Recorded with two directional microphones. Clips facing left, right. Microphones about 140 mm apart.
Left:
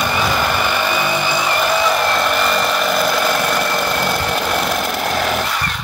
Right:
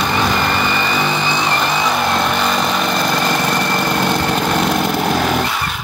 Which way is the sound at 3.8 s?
Centre (ahead or behind).